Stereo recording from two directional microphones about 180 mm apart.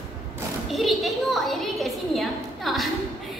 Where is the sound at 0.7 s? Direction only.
Centre (ahead or behind).